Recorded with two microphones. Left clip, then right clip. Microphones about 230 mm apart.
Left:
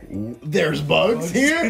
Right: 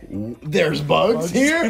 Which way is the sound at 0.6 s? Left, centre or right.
Right.